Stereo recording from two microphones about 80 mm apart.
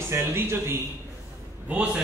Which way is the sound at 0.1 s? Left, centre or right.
Right.